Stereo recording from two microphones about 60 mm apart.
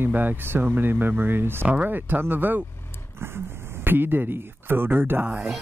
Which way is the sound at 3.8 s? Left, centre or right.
Right.